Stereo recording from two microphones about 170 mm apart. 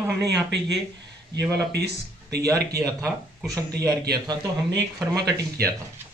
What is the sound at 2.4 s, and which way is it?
A man's voice, 20° right (ahead or behind).